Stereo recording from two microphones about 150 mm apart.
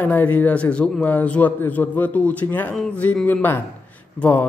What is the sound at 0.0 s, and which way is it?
Speech, 10° left (ahead or behind).